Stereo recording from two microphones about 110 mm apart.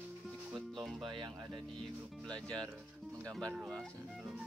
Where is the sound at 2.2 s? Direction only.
10° left (ahead or behind).